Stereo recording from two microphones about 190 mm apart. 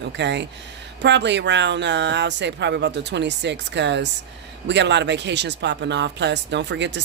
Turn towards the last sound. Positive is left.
turn(degrees=-65)  # may be behind; listen again after turning